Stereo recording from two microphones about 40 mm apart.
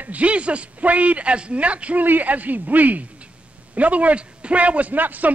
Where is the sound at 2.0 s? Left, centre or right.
Right.